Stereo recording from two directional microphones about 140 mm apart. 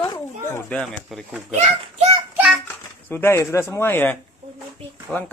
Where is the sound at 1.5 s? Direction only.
50° right (ahead or behind).